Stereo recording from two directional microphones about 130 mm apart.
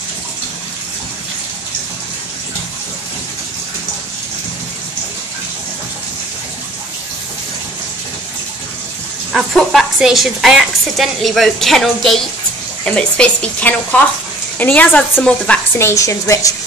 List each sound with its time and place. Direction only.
9.3 s a woman's voice: centre (ahead or behind)
15.9 s a woman's voice: 25° left (ahead or behind)